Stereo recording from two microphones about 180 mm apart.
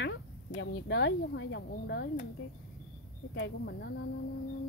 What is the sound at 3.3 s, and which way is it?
Speech, 70° left (ahead or behind).